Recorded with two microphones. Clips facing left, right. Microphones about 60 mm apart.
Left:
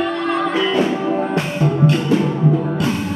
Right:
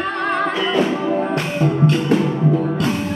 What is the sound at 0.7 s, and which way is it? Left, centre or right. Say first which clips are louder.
Music: even; centre.